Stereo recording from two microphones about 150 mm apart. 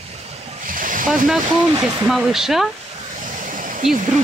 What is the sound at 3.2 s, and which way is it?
Vehicle, 60° right (ahead or behind).